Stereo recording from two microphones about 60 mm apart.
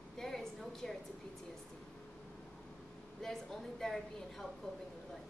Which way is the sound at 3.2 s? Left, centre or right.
Centre.